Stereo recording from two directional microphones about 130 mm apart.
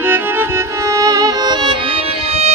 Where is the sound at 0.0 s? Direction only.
15° right (ahead or behind).